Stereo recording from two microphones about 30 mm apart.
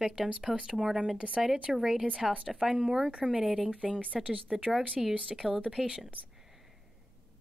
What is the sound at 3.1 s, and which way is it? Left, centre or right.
Speech, right.